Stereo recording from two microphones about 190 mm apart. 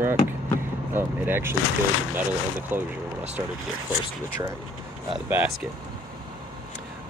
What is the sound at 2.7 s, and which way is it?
Speech, 10° right (ahead or behind).